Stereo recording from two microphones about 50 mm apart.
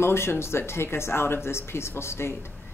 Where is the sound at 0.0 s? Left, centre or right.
Left.